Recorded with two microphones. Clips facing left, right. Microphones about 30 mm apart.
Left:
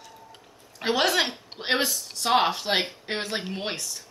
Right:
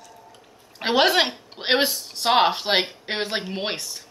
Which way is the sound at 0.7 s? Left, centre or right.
Right.